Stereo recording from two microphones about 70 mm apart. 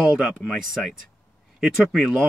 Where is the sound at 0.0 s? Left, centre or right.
Centre.